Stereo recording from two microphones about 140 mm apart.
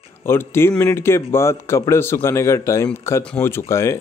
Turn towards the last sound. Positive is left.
turn(degrees=20)  # may be behind; listen again after turning